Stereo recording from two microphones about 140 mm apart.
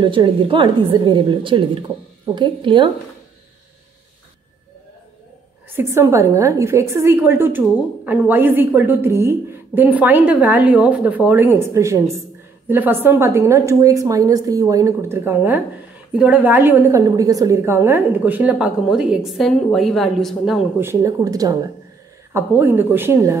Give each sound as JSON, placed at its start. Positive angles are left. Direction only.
{"t": 0.0, "sound": "a woman's voice", "side_deg": -35}
{"t": 5.7, "sound": "a woman's voice", "side_deg": -15}
{"t": 20.8, "sound": "a woman's voice", "side_deg": -20}
{"t": 22.6, "sound": "a woman's voice", "side_deg": -15}